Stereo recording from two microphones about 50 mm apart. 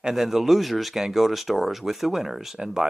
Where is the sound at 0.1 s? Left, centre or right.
Centre.